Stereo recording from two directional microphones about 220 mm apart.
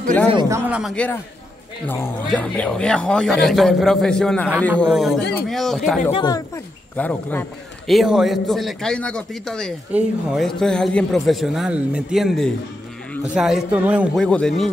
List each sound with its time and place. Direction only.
0.3 s speech: 20° right (ahead or behind)
0.7 s a man's voice: 5° right (ahead or behind)
1.9 s a man's voice: 10° left (ahead or behind)
6.1 s a man's voice: 15° left (ahead or behind)